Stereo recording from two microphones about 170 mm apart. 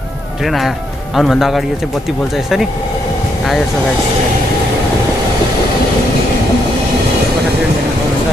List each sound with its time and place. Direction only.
0.4 s speech: centre (ahead or behind)